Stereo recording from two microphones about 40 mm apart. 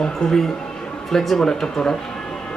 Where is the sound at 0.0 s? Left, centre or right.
Centre.